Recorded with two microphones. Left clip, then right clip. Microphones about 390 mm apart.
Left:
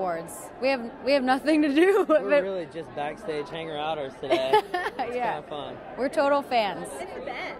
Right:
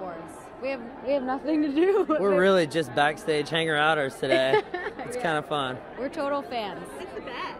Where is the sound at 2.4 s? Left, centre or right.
Right.